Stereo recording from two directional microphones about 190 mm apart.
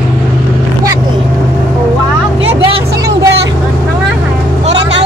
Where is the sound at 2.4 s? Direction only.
30° right (ahead or behind).